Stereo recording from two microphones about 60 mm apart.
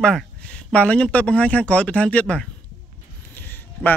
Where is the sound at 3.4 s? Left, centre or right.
Left.